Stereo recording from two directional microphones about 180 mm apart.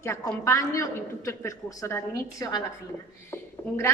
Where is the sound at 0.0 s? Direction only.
15° left (ahead or behind).